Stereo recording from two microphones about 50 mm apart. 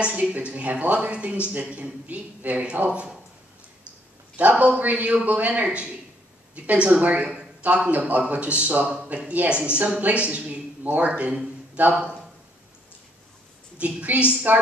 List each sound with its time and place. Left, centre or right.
0.0 s speech: right
4.4 s speech: right
13.7 s speech: right